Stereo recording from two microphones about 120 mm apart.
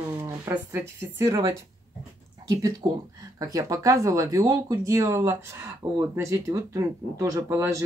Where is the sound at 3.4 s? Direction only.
30° right (ahead or behind).